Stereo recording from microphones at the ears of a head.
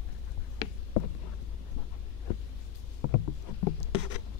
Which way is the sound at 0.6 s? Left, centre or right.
Left.